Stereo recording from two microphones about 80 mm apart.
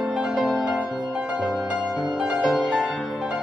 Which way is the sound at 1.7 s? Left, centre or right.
Centre.